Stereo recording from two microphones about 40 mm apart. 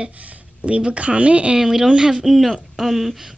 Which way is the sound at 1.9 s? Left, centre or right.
Right.